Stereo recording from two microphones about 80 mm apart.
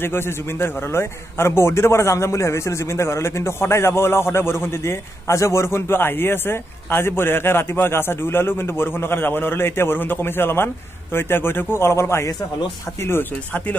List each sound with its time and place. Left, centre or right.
0.0 s a man's voice: left